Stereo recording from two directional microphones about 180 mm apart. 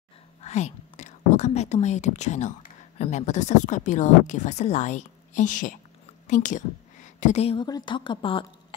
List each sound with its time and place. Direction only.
0.4 s whispering: 40° left (ahead or behind)
3.0 s a woman's voice: 40° left (ahead or behind)
7.6 s speech: 25° left (ahead or behind)